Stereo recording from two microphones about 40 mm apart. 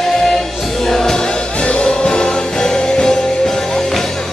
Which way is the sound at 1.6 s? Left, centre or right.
Left.